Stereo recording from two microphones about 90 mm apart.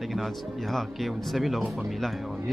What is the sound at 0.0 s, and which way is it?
Speech, centre (ahead or behind).